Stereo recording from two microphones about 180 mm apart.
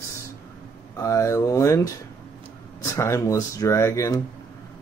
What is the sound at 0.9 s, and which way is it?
Speech, 15° left (ahead or behind).